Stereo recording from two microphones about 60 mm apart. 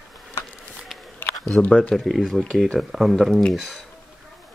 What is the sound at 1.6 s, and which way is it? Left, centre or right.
Speech, left.